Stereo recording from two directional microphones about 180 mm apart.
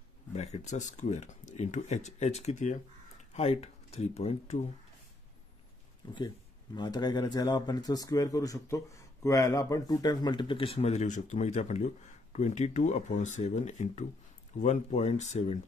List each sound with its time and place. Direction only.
0.3 s speech: 40° left (ahead or behind)
6.1 s speech: 25° left (ahead or behind)